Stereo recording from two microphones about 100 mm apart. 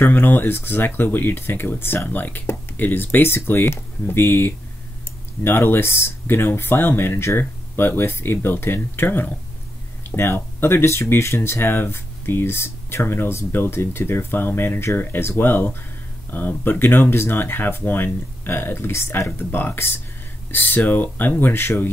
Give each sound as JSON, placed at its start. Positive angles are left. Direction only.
{"t": 0.0, "sound": "speech", "side_deg": 20}